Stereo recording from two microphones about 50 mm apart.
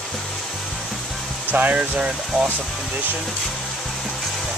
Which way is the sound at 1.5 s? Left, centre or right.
Right.